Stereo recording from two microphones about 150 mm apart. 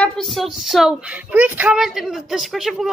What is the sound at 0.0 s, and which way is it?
Speech, centre (ahead or behind).